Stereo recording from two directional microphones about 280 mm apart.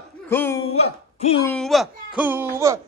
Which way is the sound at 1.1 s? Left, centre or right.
Left.